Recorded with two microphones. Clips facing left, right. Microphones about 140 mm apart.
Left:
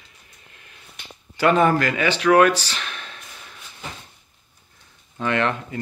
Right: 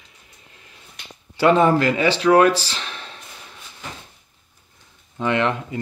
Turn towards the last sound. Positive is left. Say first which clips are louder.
# right 2 dB
turn(degrees=-20)  # may be behind; listen again after turning